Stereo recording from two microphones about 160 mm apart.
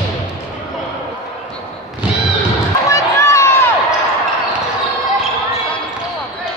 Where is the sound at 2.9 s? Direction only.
20° left (ahead or behind).